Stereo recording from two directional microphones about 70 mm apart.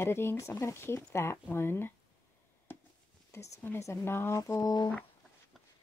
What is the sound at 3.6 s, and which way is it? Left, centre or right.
Speech, left.